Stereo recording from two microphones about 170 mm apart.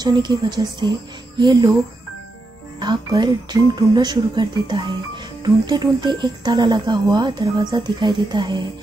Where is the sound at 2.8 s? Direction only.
25° right (ahead or behind).